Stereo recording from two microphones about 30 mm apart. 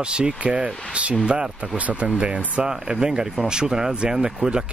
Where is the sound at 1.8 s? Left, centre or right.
Right.